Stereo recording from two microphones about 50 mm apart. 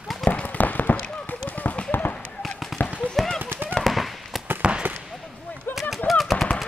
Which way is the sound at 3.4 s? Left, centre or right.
Right.